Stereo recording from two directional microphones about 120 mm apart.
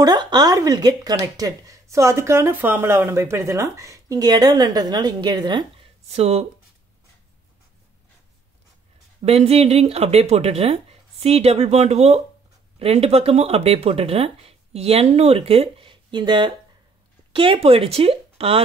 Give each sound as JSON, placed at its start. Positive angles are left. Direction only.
{"t": 0.0, "sound": "speech", "side_deg": -35}
{"t": 6.0, "sound": "speech", "side_deg": -65}
{"t": 9.2, "sound": "a woman's voice", "side_deg": -60}